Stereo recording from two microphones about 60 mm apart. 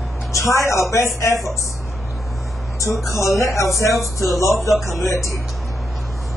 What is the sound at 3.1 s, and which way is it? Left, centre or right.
Speech, left.